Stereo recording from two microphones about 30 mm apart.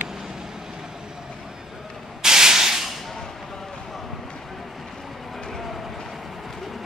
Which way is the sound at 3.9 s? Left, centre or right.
Centre.